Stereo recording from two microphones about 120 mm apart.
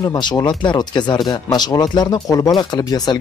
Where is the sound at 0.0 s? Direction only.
35° left (ahead or behind).